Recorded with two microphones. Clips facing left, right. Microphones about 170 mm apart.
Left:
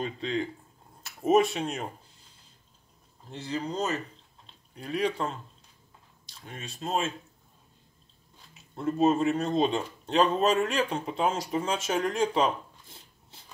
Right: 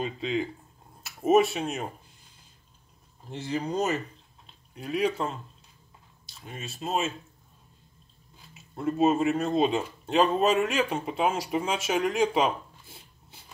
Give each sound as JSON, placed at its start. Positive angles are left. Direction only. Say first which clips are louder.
{"t": 0.0, "sound": "speech", "louder": "right 1 dB", "side_deg": -5}
{"t": 3.3, "sound": "speech", "louder": "right 2 dB", "side_deg": -15}
{"t": 4.7, "sound": "speech", "louder": "right 2 dB", "side_deg": -5}
{"t": 8.5, "sound": "speech", "louder": "right 1 dB", "side_deg": -5}